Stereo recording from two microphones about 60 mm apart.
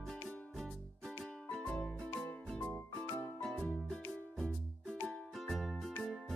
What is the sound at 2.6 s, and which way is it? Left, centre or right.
Music, left.